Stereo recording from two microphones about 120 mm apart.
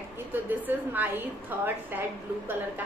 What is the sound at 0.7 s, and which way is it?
A woman's voice, 15° right (ahead or behind).